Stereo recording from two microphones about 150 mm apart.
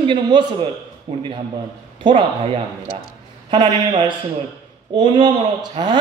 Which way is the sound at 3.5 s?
30° right (ahead or behind).